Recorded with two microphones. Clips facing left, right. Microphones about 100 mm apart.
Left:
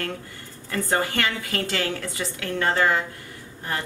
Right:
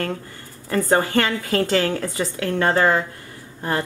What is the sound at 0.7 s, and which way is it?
A woman's voice, 40° right (ahead or behind).